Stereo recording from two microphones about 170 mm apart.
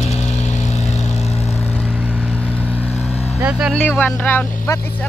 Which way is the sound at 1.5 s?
15° left (ahead or behind).